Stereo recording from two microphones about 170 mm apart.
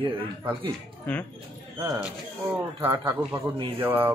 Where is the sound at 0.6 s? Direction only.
10° left (ahead or behind).